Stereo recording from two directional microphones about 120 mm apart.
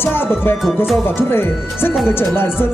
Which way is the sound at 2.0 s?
20° left (ahead or behind).